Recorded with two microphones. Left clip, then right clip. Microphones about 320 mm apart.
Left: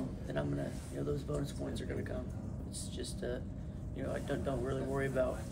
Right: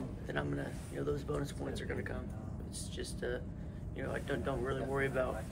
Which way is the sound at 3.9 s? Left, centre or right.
Centre.